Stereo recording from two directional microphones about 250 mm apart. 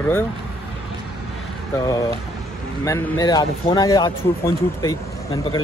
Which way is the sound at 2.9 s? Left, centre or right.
Centre.